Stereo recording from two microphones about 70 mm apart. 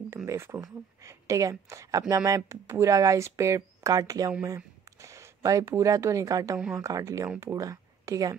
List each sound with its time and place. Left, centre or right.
0.1 s a woman's voice: right
3.9 s speech: right
5.0 s a woman's voice: right